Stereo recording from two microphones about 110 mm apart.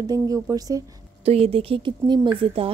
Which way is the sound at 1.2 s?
65° right (ahead or behind).